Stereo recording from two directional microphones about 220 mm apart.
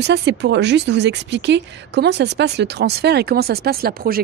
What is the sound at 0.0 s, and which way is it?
Speech, 50° right (ahead or behind).